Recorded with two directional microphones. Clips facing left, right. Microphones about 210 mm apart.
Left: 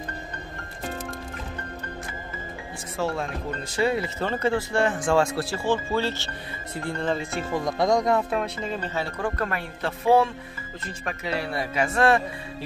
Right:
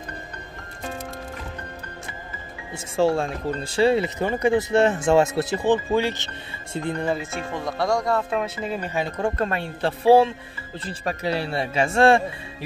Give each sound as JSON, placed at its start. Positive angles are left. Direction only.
{"t": 3.0, "sound": "speech", "side_deg": -30}
{"t": 4.2, "sound": "speech", "side_deg": -15}
{"t": 7.2, "sound": "speech", "side_deg": 5}
{"t": 8.3, "sound": "speech", "side_deg": -5}
{"t": 9.2, "sound": "speech", "side_deg": -25}